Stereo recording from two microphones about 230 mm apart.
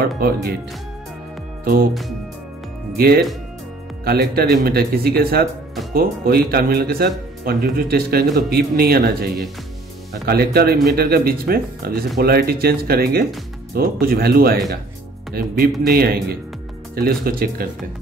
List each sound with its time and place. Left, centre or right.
0.0 s speech: right
1.6 s speech: right
3.0 s speech: right